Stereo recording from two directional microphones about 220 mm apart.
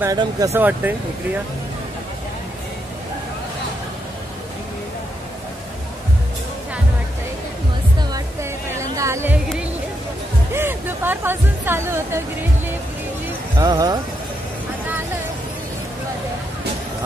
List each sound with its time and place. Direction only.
0.0 s speech: 15° right (ahead or behind)
8.1 s music: 15° right (ahead or behind)
10.5 s speech: 10° right (ahead or behind)
13.6 s speech: 15° right (ahead or behind)